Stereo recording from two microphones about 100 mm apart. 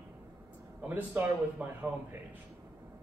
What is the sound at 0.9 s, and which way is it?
A man's voice, 20° right (ahead or behind).